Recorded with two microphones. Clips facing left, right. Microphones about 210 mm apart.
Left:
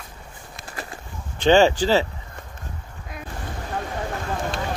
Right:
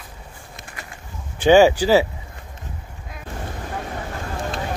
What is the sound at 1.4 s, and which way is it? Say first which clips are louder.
Speech: right 3 dB; 10° right (ahead or behind).